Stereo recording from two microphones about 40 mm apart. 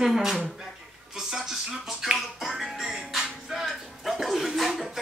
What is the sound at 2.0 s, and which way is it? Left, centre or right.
Music, centre.